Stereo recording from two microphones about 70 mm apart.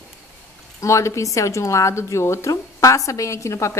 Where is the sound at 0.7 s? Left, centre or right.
Left.